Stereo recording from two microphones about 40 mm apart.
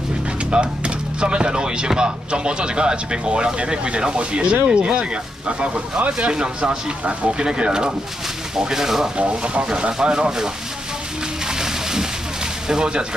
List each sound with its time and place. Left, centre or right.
0.5 s speech: right
8.5 s speech: centre
9.1 s speech: right
11.4 s music: centre
12.6 s speech: centre